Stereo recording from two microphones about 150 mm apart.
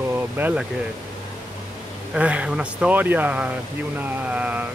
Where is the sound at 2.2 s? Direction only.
10° right (ahead or behind).